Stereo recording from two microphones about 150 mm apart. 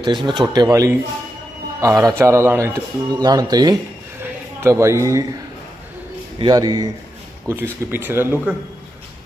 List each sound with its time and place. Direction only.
0.0 s a man's voice: 30° right (ahead or behind)
4.2 s a sound: 15° right (ahead or behind)
6.4 s a man's voice: 25° right (ahead or behind)
7.4 s speech: 15° right (ahead or behind)